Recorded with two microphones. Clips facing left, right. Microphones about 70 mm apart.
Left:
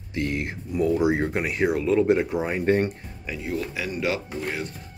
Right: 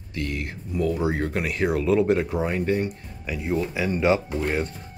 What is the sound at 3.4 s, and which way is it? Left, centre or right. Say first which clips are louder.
Speech: right 4 dB; right.